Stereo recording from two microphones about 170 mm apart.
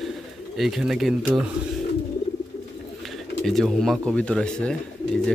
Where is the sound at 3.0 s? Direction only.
Centre (ahead or behind).